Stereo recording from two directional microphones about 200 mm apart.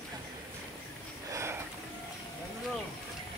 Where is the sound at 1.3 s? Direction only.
15° right (ahead or behind).